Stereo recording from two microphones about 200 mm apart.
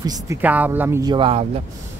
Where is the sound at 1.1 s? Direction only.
25° right (ahead or behind).